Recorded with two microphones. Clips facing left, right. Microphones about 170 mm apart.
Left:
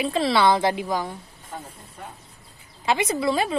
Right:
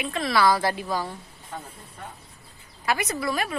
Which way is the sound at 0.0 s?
30° left (ahead or behind).